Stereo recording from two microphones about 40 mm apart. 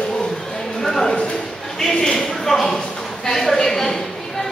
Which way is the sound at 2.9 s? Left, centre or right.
Centre.